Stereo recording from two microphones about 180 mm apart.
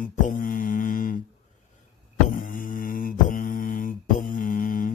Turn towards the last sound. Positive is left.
turn(degrees=50)  # may be behind; listen again after turning